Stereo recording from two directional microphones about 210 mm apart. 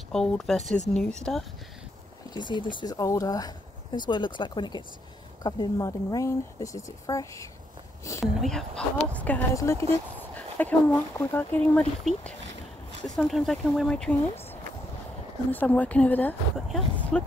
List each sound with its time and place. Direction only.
0.1 s speech: centre (ahead or behind)
2.3 s speech: 20° left (ahead or behind)
8.4 s speech: centre (ahead or behind)